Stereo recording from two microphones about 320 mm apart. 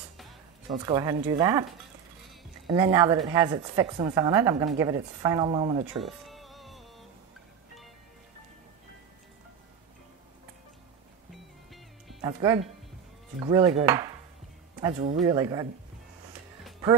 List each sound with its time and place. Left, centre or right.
0.7 s a woman's voice: centre
6.2 s music: centre
12.2 s a woman's voice: centre
13.8 s dishes: centre
14.8 s a woman's voice: centre